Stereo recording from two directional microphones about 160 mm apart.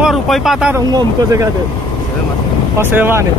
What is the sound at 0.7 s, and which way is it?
Speech, 20° right (ahead or behind).